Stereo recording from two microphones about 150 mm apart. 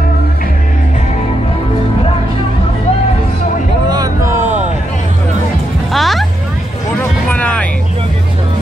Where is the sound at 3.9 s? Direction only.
25° right (ahead or behind).